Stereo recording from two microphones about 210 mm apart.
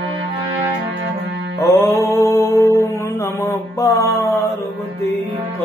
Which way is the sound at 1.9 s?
15° left (ahead or behind).